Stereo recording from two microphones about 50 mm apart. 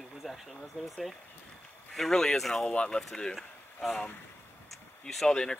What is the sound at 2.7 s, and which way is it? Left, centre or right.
Speech, left.